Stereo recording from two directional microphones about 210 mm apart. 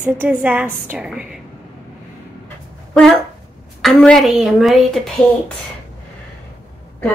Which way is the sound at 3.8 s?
5° left (ahead or behind).